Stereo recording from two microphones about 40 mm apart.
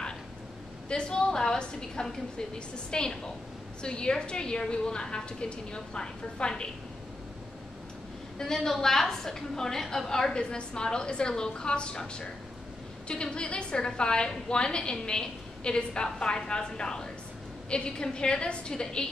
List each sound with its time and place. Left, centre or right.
0.8 s a woman's voice: left
8.4 s a woman's voice: centre